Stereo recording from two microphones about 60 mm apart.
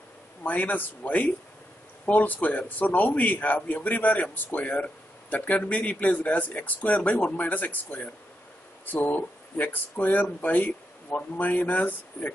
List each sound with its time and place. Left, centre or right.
0.4 s a man's voice: left